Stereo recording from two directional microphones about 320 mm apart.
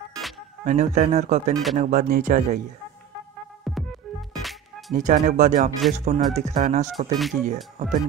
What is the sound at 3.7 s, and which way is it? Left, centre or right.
Music, centre.